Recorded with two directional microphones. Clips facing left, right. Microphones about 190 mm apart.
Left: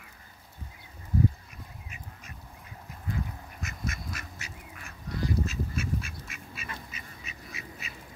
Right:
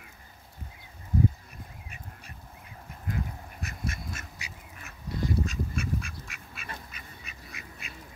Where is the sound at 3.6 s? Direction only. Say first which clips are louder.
Even; 30° right (ahead or behind).